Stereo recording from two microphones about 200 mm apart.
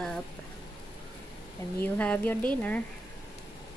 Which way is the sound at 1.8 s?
10° left (ahead or behind).